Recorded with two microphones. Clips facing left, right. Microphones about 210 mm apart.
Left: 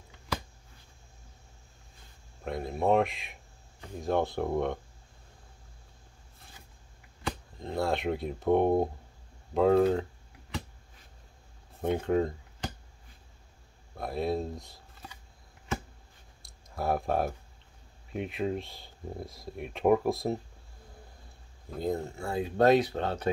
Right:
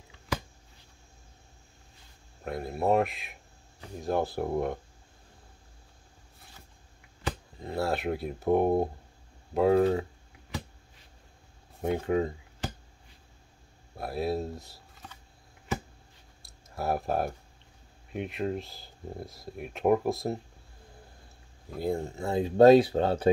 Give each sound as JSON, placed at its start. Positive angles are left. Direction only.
{"t": 2.4, "sound": "speech", "side_deg": -5}
{"t": 7.2, "sound": "speech", "side_deg": -5}
{"t": 11.8, "sound": "a sound", "side_deg": -5}
{"t": 13.9, "sound": "speech", "side_deg": -5}
{"t": 16.4, "sound": "a sound", "side_deg": -5}
{"t": 18.1, "sound": "speech", "side_deg": 0}
{"t": 21.6, "sound": "speech", "side_deg": -10}